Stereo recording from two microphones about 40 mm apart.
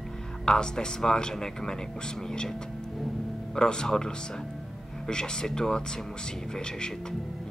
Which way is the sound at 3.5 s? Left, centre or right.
Centre.